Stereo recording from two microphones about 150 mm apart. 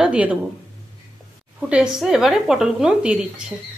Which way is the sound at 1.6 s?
5° right (ahead or behind).